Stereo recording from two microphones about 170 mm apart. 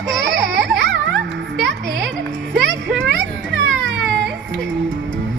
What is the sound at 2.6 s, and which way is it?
Children playing, 90° right.